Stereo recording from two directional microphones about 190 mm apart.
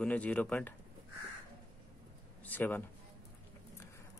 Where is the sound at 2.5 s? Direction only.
10° left (ahead or behind).